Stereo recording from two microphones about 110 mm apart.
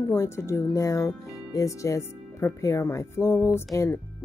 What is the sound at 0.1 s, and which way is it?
Speech, 25° left (ahead or behind).